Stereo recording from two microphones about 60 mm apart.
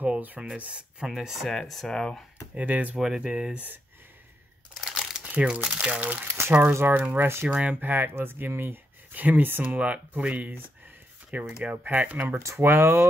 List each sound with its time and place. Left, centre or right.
0.0 s speech: right
1.0 s speech: centre
2.5 s speech: right
3.0 s speech: centre
4.8 s crumpling: centre
5.2 s speech: right
6.0 s speech: right
7.4 s speech: centre
7.8 s speech: right
12.4 s speech: right